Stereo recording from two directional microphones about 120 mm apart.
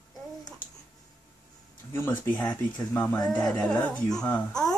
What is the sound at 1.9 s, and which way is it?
Speech, 15° left (ahead or behind).